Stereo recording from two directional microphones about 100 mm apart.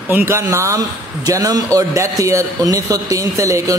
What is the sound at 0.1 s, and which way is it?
A man's voice, 25° right (ahead or behind).